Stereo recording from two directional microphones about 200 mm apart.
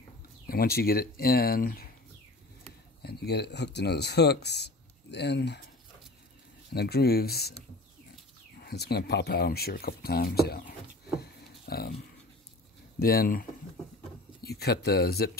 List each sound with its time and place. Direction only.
0.5 s speech: 50° left (ahead or behind)
3.0 s speech: 55° left (ahead or behind)
6.7 s speech: 55° left (ahead or behind)
8.6 s speech: 50° left (ahead or behind)
11.6 s a sound: 50° left (ahead or behind)
13.0 s speech: 45° left (ahead or behind)